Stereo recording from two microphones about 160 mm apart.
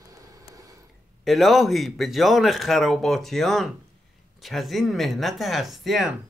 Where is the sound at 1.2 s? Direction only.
Centre (ahead or behind).